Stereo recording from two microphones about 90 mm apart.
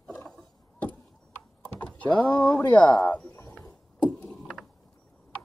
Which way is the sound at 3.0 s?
20° left (ahead or behind).